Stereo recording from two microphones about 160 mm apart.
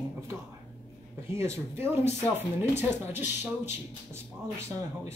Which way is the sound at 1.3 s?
15° right (ahead or behind).